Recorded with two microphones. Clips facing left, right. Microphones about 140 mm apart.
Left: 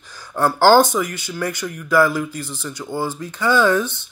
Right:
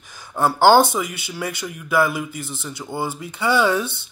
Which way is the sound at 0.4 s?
15° right (ahead or behind).